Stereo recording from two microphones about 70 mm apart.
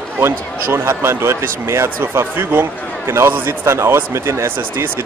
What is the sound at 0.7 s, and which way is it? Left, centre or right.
Speech, right.